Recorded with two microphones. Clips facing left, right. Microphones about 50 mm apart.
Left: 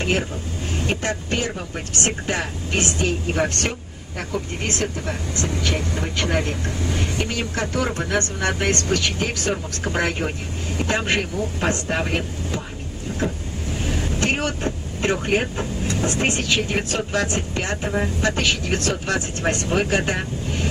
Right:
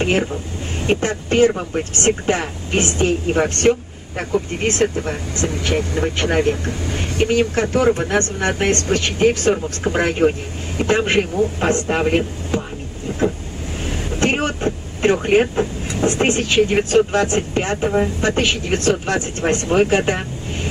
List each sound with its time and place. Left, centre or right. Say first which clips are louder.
0.8 s speech: right 7 dB; right
8.1 s speech: right 3 dB; right
9.5 s speech: right 6 dB; centre
14.2 s vehicle: right 5 dB; right
14.6 s speech: right 5 dB; right